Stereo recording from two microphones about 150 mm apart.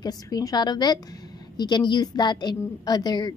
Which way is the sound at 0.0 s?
25° left (ahead or behind).